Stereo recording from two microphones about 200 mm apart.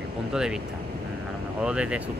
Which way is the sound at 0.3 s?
5° right (ahead or behind).